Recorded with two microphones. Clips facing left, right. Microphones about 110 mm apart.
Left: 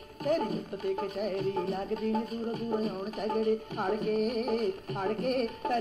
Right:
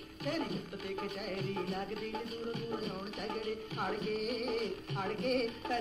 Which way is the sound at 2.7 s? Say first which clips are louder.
Left 7 dB; 45° left (ahead or behind).